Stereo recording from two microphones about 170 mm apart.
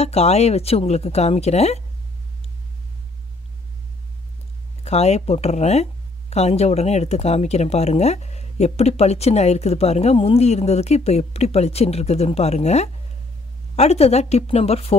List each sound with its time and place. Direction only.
0.0 s speech: 40° left (ahead or behind)
4.8 s speech: 40° left (ahead or behind)